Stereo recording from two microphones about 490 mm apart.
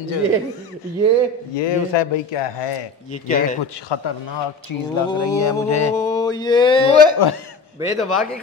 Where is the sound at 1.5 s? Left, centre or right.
Left.